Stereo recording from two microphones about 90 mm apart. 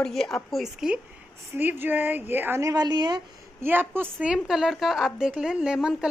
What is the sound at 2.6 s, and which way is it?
Speech, 45° right (ahead or behind).